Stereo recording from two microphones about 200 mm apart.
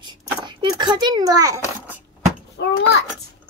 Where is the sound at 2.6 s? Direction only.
60° left (ahead or behind).